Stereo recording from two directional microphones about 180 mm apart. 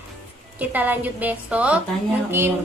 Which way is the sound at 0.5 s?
10° right (ahead or behind).